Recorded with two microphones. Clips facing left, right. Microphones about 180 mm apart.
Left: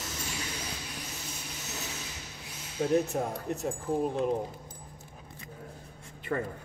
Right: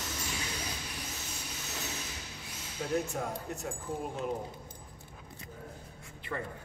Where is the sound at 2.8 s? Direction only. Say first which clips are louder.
Left 7 dB; 35° left (ahead or behind).